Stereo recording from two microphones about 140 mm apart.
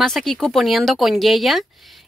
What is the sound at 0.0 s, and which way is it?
Speech, centre (ahead or behind).